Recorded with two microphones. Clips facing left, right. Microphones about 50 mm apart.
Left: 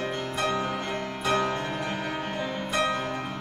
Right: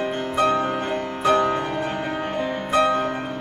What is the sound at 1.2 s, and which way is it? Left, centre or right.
Music, right.